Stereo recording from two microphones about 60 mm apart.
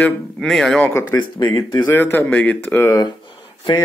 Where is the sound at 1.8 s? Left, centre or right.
Left.